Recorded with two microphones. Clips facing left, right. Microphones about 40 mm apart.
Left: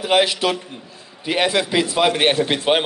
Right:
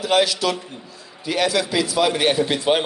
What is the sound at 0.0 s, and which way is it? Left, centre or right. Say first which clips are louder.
A man's voice: left 1 dB; left.